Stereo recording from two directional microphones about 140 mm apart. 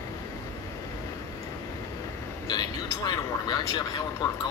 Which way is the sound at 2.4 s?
30° left (ahead or behind).